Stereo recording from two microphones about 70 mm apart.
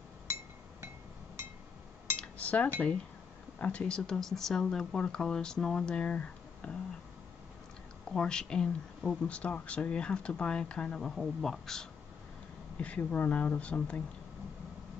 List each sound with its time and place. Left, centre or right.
2.1 s cutlery: left
3.5 s speech: centre
8.1 s speech: centre
11.1 s speech: centre
12.7 s speech: centre